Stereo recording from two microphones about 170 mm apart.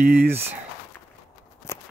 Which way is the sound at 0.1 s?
10° right (ahead or behind).